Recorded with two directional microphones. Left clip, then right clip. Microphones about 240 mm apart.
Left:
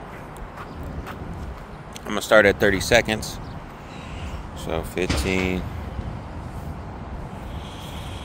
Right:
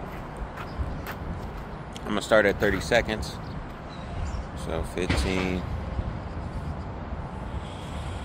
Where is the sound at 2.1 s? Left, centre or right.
Left.